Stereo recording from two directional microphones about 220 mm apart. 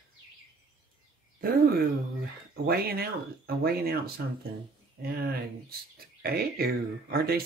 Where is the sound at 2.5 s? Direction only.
45° right (ahead or behind).